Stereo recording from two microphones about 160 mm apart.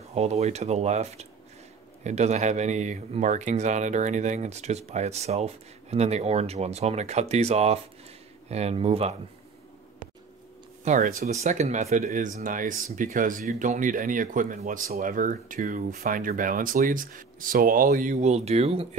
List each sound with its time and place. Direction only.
0.1 s speech: 40° right (ahead or behind)
10.8 s speech: 50° right (ahead or behind)